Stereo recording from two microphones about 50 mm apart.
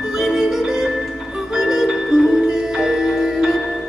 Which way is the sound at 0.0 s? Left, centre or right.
Centre.